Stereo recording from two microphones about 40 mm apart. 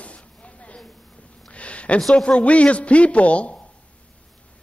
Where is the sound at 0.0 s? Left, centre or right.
Left.